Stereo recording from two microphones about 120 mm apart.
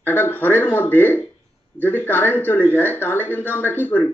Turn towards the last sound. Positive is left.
turn(degrees=15)  # may be behind; listen again after turning